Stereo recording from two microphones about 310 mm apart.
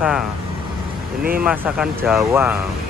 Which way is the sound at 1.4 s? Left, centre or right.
Centre.